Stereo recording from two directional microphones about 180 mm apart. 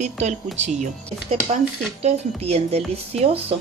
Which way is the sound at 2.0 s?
35° right (ahead or behind).